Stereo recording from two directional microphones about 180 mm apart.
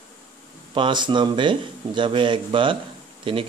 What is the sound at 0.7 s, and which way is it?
Speech, 25° right (ahead or behind).